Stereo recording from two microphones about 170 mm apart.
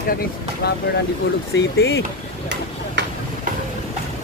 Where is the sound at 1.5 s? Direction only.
90° left.